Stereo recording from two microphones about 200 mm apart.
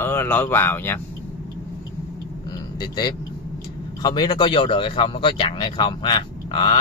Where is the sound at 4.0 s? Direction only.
20° left (ahead or behind).